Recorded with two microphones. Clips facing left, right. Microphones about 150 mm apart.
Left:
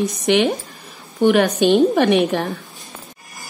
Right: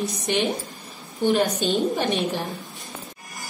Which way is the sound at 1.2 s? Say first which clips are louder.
Left 6 dB; 70° left (ahead or behind).